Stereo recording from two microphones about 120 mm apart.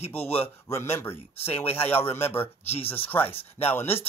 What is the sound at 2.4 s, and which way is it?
Speech, 55° left (ahead or behind).